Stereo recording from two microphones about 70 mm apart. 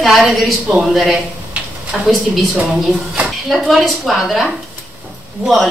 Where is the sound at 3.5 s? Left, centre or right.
Centre.